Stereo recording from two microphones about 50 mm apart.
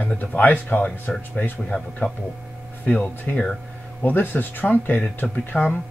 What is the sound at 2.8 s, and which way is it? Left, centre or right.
Speech, left.